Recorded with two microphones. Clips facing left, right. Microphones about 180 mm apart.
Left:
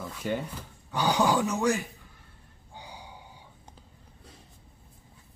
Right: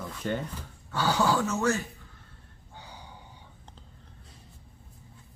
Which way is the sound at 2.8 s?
10° left (ahead or behind).